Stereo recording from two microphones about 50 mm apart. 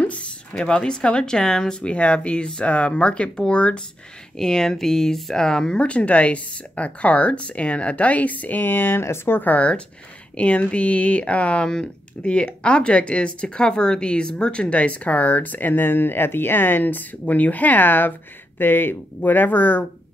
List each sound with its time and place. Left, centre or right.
0.0 s a sound: left
0.6 s speech: centre
4.4 s speech: centre; by 9.0 s left
9.0 s speech: left
9.4 s speech: left